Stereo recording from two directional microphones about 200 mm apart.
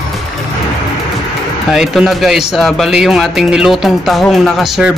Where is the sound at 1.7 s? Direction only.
Centre (ahead or behind).